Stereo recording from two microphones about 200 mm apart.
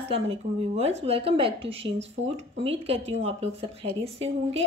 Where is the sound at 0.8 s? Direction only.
30° right (ahead or behind).